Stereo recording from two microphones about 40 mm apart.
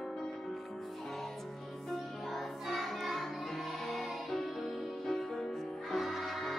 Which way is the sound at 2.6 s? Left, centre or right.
Centre.